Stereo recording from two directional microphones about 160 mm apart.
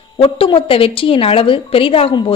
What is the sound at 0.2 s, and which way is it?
A woman's voice, 35° left (ahead or behind).